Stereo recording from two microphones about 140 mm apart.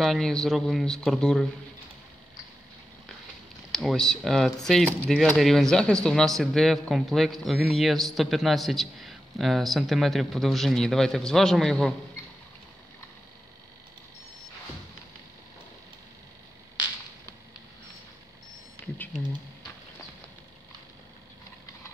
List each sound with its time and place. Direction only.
0.0 s a man's voice: centre (ahead or behind)
3.7 s a man's voice: centre (ahead or behind)